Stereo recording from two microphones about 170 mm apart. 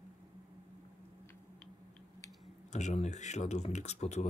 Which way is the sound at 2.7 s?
45° left (ahead or behind).